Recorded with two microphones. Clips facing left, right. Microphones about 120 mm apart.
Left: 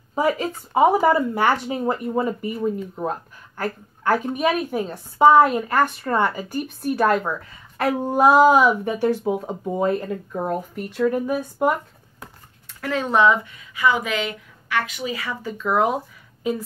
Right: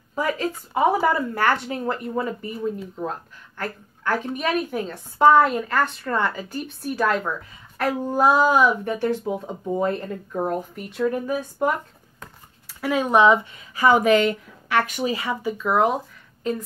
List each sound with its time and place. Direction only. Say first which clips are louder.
0.1 s a woman's voice: left 3 dB; 25° left (ahead or behind); by 11.7 s 5° left (ahead or behind)
12.6 s speech: right 2 dB; 10° right (ahead or behind)
13.7 s speech: right 5 dB; 45° right (ahead or behind)
15.0 s speech: right 3 dB; 25° right (ahead or behind)
15.4 s a woman's voice: even; 5° right (ahead or behind)